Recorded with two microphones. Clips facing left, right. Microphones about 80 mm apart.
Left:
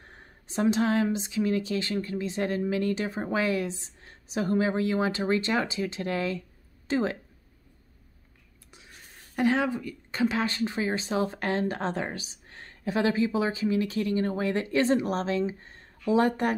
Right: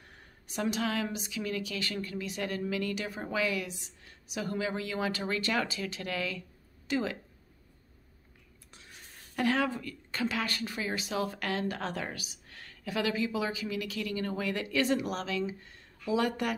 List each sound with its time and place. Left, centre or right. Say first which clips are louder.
0.0 s a sound: left 4 dB; left
1.0 s speech: left 8 dB; left
9.4 s speech: left 4 dB; left